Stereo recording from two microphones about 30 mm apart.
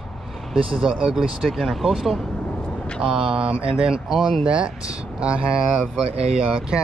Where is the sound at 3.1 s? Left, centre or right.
Right.